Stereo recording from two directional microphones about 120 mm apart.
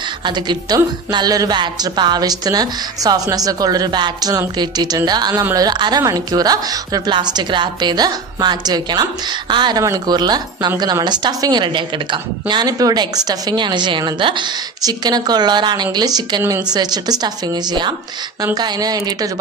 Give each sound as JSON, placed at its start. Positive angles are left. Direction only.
{"t": 0.2, "sound": "a woman's voice", "side_deg": -40}
{"t": 5.4, "sound": "speech", "side_deg": -25}
{"t": 5.7, "sound": "a woman's voice", "side_deg": -35}